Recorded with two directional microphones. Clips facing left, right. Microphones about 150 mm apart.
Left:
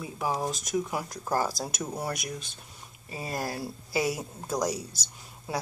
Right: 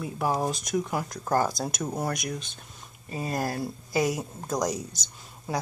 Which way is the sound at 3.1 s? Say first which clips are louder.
Right 4 dB; 5° left (ahead or behind).